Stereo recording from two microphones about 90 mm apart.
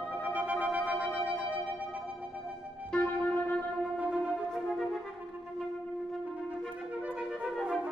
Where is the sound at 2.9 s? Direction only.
20° left (ahead or behind).